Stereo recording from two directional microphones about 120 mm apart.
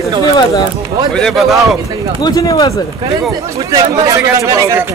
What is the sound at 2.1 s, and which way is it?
Speech, 30° left (ahead or behind).